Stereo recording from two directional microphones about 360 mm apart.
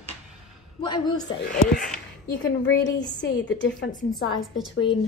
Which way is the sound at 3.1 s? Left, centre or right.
Left.